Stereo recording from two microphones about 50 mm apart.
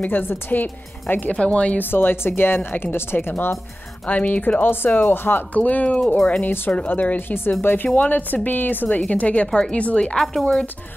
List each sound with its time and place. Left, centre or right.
0.0 s a woman's voice: left
1.3 s speech: left
1.8 s a woman's voice: left
5.5 s a woman's voice: left
6.4 s a woman's voice: left